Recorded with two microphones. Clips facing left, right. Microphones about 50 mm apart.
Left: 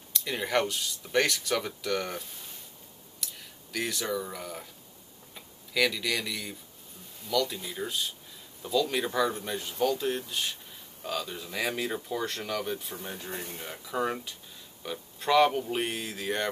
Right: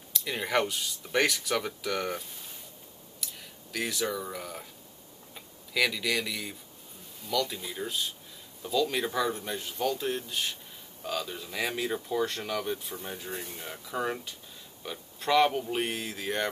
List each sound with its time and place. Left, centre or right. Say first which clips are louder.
0.1 s speech: even; centre
13.3 s speech: left 1 dB; left
13.6 s speech: left 3 dB; centre